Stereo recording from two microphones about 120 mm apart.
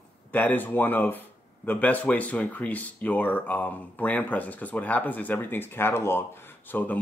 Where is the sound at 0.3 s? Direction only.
15° left (ahead or behind).